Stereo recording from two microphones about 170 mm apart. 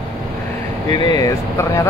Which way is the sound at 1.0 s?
25° left (ahead or behind).